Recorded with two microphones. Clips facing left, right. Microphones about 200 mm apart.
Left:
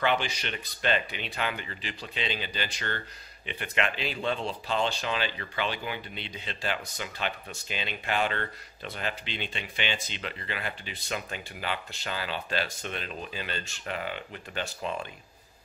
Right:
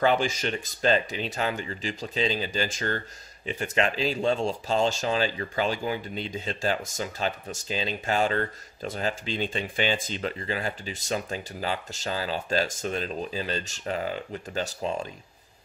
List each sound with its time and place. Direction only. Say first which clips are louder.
0.0 s speech: right 5 dB; 40° right (ahead or behind)